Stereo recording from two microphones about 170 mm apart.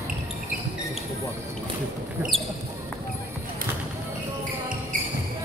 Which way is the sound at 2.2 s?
Centre (ahead or behind).